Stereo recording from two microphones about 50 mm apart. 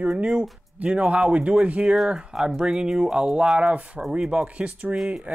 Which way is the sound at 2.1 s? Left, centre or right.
Centre.